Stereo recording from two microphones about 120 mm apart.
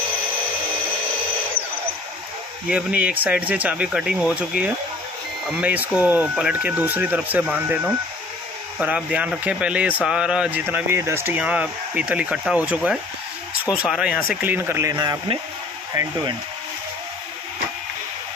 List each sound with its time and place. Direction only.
2.7 s speech: 10° right (ahead or behind)